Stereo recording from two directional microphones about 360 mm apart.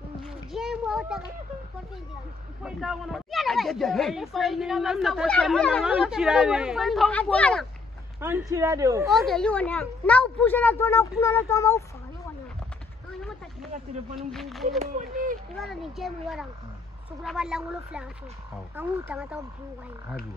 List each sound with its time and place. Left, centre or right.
0.2 s a sound: centre
2.6 s speech: centre
14.1 s speech: centre
14.8 s speech: right
15.5 s speech: centre